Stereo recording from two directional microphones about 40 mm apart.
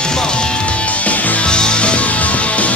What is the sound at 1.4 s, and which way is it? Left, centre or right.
Music, left.